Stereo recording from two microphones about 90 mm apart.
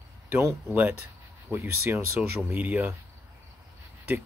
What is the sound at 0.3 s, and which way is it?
Speech, 25° right (ahead or behind).